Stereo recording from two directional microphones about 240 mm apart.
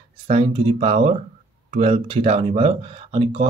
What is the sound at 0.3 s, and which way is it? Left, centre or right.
Speech, right.